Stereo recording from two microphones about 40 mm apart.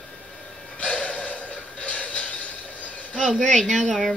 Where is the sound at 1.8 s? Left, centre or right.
Left.